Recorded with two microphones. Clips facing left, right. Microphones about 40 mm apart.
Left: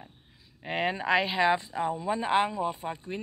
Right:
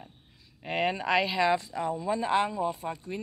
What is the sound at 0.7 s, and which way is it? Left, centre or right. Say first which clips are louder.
Speech: even; centre.